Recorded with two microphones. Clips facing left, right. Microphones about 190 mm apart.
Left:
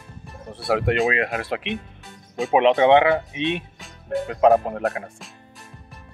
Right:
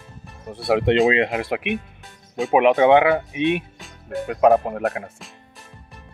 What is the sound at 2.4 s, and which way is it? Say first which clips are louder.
Speech: right 1 dB; centre (ahead or behind).